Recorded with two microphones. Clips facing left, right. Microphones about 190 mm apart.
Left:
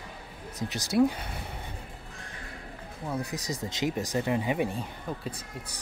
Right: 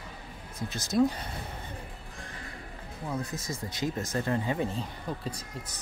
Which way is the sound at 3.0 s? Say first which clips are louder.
Left 1 dB; 10° left (ahead or behind).